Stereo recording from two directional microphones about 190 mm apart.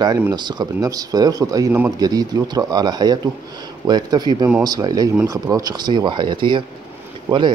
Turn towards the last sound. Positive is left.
turn(degrees=-25)  # may be behind; listen again after turning